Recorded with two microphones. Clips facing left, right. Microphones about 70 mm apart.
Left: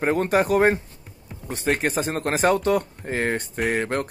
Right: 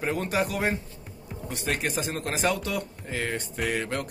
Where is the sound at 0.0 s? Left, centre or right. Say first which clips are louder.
Left 6 dB; left.